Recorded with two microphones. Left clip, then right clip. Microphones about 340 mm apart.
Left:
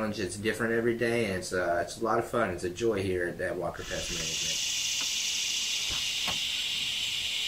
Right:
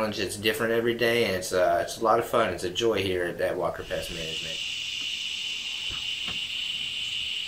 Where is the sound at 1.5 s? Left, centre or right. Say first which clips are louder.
Right 6 dB; right.